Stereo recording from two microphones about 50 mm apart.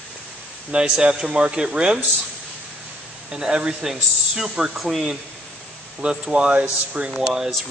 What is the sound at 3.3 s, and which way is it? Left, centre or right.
Speech, centre.